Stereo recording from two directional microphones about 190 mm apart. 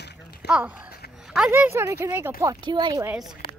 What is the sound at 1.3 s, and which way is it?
Speech, 5° right (ahead or behind).